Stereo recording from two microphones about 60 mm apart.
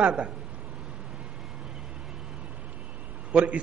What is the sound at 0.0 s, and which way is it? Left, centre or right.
Speech, centre.